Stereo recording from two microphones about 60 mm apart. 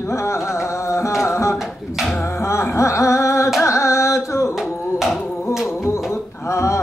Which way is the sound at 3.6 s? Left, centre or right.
Left.